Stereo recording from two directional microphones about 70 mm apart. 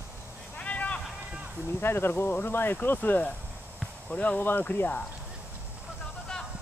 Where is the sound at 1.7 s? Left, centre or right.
Left.